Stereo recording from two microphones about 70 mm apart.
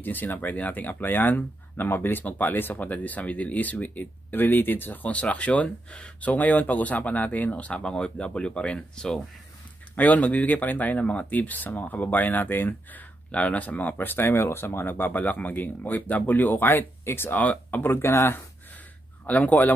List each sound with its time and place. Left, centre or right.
0.0 s speech: left; by 9.2 s centre
9.9 s speech: left
19.2 s speech: left